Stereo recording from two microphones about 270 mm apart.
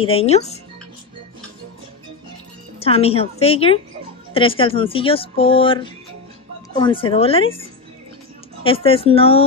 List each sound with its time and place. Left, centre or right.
0.0 s speech: left
2.8 s speech: left
8.6 s speech: centre